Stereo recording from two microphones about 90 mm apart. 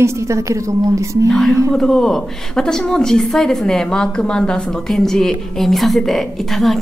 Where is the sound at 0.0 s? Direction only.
35° right (ahead or behind).